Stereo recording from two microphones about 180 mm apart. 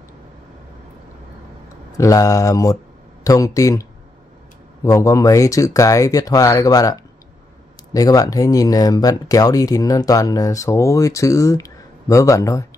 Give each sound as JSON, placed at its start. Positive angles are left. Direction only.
{"t": 1.9, "sound": "speech", "side_deg": 15}
{"t": 4.8, "sound": "speech", "side_deg": 15}